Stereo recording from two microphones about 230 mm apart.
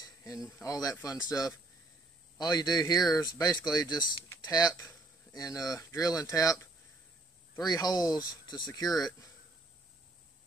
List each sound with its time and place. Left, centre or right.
0.0 s speech: centre